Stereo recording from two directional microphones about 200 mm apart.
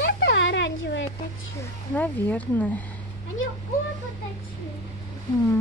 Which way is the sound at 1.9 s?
10° left (ahead or behind).